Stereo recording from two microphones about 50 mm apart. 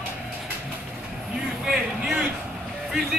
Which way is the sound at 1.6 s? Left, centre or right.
Centre.